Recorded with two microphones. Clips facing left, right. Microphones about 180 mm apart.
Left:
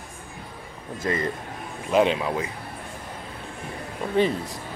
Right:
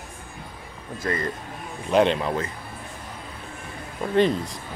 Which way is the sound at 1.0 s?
25° left (ahead or behind).